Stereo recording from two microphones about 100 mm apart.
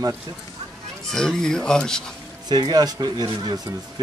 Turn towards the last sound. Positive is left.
turn(degrees=-45)  # may be behind; listen again after turning